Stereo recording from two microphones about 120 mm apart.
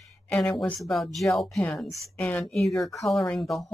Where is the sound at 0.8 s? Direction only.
Centre (ahead or behind).